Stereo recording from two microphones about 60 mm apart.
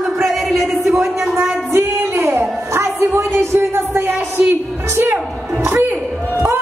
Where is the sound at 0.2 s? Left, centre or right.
Centre.